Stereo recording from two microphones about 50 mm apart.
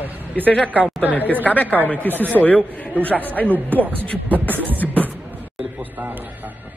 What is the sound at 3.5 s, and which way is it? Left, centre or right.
Speech, right.